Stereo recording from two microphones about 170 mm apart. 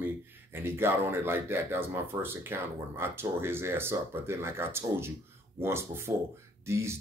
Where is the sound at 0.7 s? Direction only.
15° right (ahead or behind).